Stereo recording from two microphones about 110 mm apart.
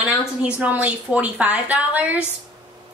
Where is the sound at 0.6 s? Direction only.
15° right (ahead or behind).